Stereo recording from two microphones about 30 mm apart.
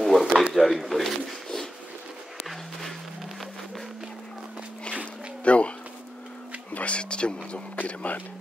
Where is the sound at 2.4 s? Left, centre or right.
Centre.